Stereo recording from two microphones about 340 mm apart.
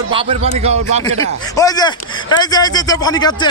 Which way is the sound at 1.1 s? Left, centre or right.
Centre.